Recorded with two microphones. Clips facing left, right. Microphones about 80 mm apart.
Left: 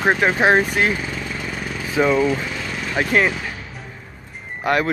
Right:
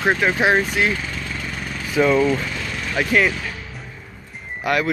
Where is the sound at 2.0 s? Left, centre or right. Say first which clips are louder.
Right 1 dB; centre.